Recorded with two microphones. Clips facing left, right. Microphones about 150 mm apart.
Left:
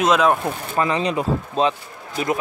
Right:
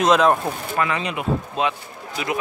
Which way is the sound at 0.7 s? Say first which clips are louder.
Left 4 dB; 30° left (ahead or behind).